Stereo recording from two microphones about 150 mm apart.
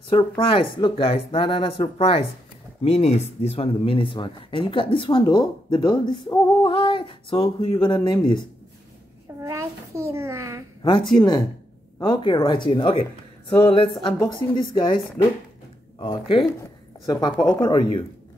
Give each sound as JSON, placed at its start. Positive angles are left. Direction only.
{"t": 0.1, "sound": "speech", "side_deg": 35}
{"t": 6.7, "sound": "a sound", "side_deg": 35}
{"t": 7.8, "sound": "speech", "side_deg": 30}
{"t": 9.4, "sound": "a sound", "side_deg": -20}
{"t": 10.8, "sound": "a woman's voice", "side_deg": 30}
{"t": 16.0, "sound": "speech", "side_deg": 30}